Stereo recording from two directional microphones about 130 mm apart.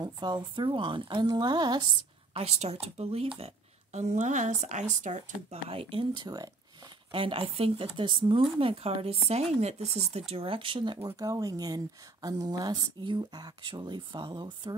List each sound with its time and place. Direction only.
0.0 s speech: 35° right (ahead or behind)
2.3 s a woman's voice: 50° right (ahead or behind); by 5.6 s 70° right (ahead or behind)
5.7 s speech: 45° right (ahead or behind)
7.1 s speech: 40° right (ahead or behind)
11.1 s speech: 25° right (ahead or behind)